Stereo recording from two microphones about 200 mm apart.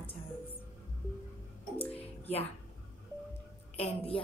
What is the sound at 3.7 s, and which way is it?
Speech, 30° left (ahead or behind).